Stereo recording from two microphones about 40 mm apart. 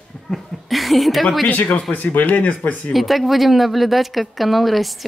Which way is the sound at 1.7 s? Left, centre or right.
Left.